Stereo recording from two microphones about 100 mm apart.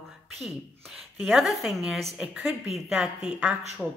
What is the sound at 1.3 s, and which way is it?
A woman's voice, centre (ahead or behind).